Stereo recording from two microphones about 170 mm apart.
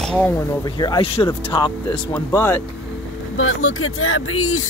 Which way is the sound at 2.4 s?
15° left (ahead or behind).